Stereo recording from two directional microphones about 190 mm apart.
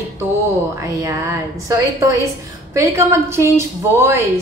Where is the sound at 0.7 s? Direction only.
15° right (ahead or behind).